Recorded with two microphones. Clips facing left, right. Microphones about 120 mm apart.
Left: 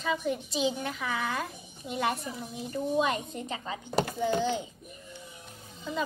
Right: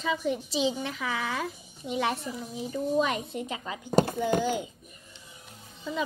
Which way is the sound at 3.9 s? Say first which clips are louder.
Right 6 dB; 40° right (ahead or behind).